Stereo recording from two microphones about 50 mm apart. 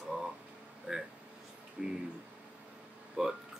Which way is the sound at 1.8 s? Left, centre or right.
Centre.